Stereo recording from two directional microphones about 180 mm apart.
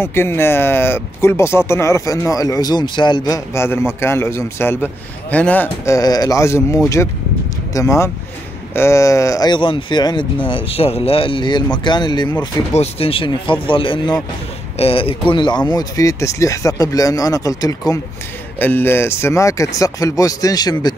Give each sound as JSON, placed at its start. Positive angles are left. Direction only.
{"t": 0.0, "sound": "speech", "side_deg": 15}